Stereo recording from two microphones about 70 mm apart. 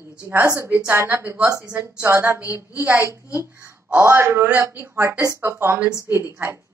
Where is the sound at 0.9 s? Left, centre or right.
Right.